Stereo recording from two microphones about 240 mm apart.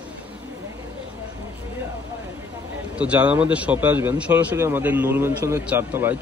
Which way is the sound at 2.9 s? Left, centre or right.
Centre.